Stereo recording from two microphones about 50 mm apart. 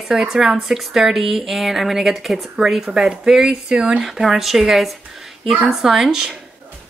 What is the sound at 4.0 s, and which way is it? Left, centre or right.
Speech, centre.